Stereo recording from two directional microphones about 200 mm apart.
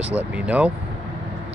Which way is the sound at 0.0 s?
5° right (ahead or behind).